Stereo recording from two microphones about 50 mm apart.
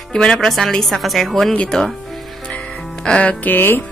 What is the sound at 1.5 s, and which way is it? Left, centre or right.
Music, left.